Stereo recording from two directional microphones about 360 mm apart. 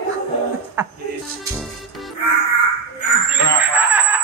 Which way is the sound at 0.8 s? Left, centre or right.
Centre.